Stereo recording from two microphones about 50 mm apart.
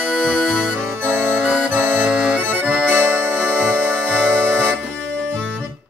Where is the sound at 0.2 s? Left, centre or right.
Centre.